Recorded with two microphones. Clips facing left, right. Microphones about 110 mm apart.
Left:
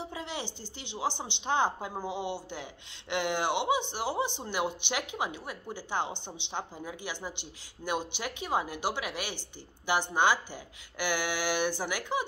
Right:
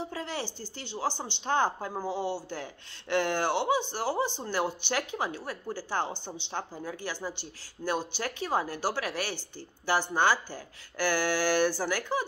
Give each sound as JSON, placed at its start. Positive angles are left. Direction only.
{"t": 0.0, "sound": "speech", "side_deg": 20}